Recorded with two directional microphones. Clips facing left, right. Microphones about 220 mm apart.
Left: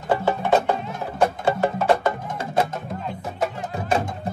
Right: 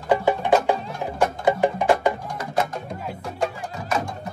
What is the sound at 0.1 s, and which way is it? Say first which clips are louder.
Music: right 1 dB; 15° right (ahead or behind).